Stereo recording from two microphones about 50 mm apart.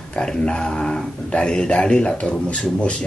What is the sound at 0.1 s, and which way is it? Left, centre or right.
Speech, centre.